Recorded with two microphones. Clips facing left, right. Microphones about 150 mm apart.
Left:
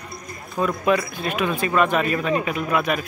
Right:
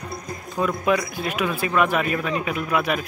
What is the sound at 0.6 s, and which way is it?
Speech, 10° right (ahead or behind).